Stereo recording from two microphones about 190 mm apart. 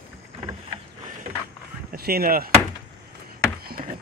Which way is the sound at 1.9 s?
55° right (ahead or behind).